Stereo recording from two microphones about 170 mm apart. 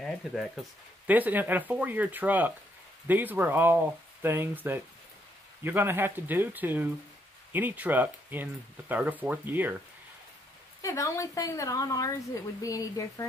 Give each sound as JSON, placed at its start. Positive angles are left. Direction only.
{"t": 0.0, "sound": "speech", "side_deg": 0}
{"t": 10.8, "sound": "a woman's voice", "side_deg": 20}